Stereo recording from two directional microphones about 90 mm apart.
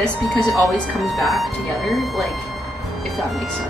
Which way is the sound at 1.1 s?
Centre (ahead or behind).